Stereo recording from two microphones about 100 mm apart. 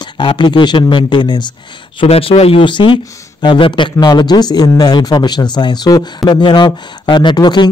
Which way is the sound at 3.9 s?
45° left (ahead or behind).